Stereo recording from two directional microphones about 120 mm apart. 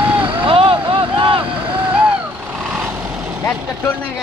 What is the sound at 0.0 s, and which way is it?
Vehicle, 15° right (ahead or behind).